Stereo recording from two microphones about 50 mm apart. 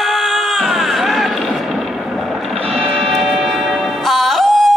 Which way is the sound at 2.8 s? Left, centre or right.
Centre.